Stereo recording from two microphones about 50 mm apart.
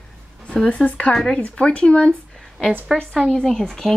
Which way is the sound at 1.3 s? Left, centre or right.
Left.